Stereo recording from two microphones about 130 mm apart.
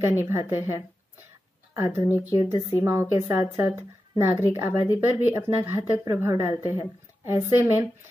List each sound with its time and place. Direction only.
0.0 s a woman's voice: 15° right (ahead or behind)